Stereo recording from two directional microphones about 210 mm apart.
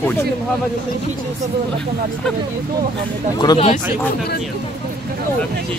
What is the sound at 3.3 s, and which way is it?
Speech, 20° left (ahead or behind).